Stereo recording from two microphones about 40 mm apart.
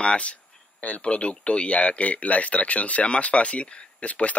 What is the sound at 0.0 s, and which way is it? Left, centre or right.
Speech, left.